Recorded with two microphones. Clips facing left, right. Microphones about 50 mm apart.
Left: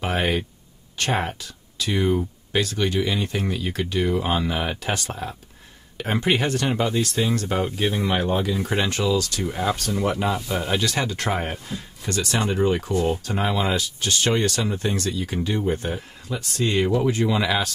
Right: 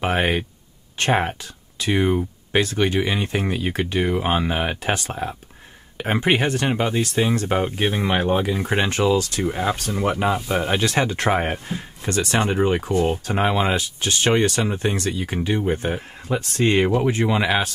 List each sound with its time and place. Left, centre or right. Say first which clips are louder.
0.0 s speech: right 3 dB; right